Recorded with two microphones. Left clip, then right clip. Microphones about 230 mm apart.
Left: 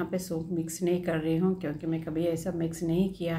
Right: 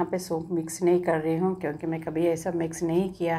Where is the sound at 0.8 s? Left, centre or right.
Right.